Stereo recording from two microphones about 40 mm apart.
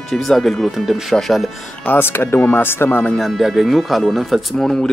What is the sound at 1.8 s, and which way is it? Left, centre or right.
Speech, left.